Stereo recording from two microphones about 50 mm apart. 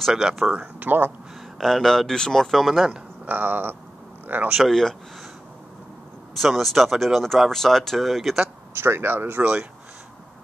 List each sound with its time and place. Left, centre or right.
0.1 s speech: centre
0.5 s speech: right
1.6 s speech: centre
3.3 s speech: right
4.6 s speech: centre
6.3 s speech: centre
8.7 s speech: right
9.4 s speech: right